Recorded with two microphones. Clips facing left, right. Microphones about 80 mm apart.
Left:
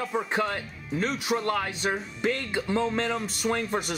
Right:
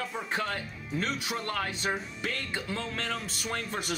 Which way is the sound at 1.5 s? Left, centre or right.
Centre.